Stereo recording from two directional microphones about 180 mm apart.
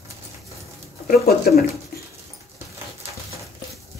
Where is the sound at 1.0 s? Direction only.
55° left (ahead or behind).